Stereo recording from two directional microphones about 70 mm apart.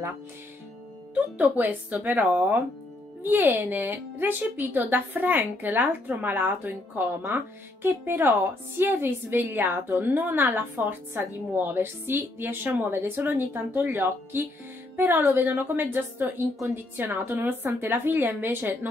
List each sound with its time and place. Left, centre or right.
1.6 s a woman's voice: right
13.8 s a woman's voice: right